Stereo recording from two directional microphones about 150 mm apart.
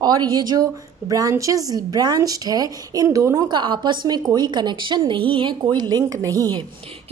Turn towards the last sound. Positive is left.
turn(degrees=-20)  # may be behind; listen again after turning